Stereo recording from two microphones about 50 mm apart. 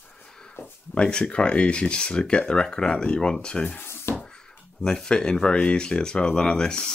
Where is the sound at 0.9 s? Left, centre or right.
Centre.